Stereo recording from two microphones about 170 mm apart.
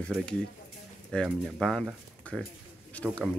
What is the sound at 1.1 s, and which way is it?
Speech, 5° left (ahead or behind).